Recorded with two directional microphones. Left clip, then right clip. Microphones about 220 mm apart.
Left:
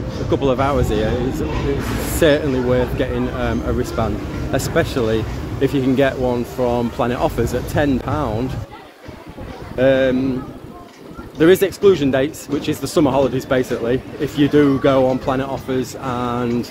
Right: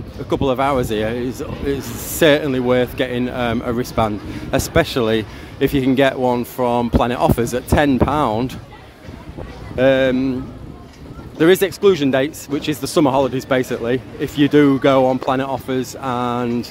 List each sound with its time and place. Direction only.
0.3 s a man's voice: 25° right (ahead or behind)
2.1 s a man's voice: 25° right (ahead or behind)
9.8 s a man's voice: 30° right (ahead or behind)
11.3 s a man's voice: 25° right (ahead or behind)